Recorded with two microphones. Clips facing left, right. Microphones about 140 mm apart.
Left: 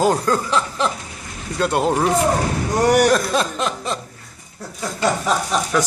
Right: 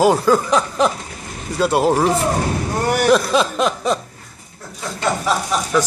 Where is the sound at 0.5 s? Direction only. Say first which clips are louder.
Right 4 dB; 15° right (ahead or behind).